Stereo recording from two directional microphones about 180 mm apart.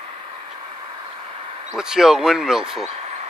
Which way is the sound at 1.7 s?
5° right (ahead or behind).